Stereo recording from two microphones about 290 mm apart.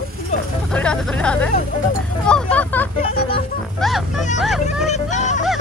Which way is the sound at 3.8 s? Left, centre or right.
Centre.